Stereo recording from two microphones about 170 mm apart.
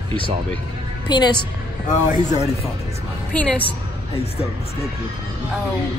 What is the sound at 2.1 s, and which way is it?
Speech, 45° left (ahead or behind).